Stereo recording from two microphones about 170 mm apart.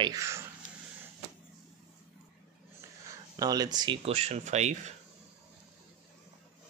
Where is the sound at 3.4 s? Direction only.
20° right (ahead or behind); by 4.9 s 45° right (ahead or behind).